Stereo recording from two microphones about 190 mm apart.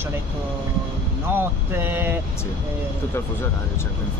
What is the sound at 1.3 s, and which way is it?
Speech, 10° right (ahead or behind).